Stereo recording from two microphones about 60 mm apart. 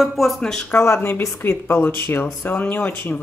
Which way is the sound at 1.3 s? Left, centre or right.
Left.